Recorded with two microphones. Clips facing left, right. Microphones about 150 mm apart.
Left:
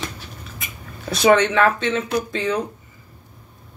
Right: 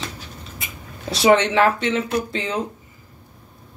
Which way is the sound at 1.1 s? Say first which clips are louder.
Even; 25° right (ahead or behind).